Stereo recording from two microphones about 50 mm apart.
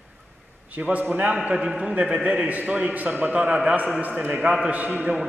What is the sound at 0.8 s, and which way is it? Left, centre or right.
A man's voice, right.